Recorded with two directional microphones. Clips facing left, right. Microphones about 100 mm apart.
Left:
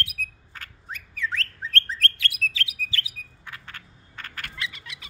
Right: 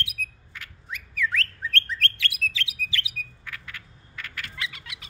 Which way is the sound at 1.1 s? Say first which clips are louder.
Right 3 dB; 30° left (ahead or behind).